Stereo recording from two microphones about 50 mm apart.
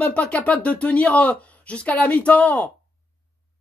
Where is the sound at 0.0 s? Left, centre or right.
Left.